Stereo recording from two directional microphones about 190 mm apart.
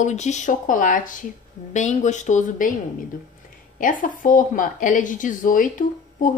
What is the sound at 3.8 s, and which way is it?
Speech, 45° left (ahead or behind).